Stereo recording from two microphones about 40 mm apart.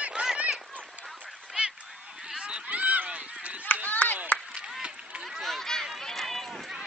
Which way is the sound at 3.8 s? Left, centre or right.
Left.